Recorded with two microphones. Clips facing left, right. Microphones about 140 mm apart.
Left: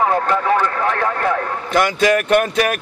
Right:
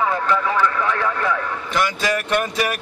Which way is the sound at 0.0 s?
45° left (ahead or behind).